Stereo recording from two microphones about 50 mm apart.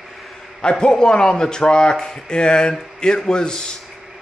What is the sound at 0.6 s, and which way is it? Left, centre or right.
A man's voice, centre.